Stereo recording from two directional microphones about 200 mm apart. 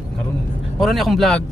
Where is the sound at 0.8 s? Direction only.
Centre (ahead or behind).